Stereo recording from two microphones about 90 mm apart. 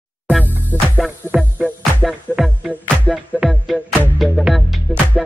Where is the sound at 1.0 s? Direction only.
5° right (ahead or behind).